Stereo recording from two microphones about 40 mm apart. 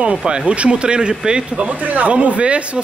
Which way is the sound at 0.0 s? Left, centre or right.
Right.